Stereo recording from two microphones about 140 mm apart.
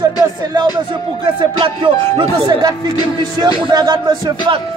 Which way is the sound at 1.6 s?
40° right (ahead or behind).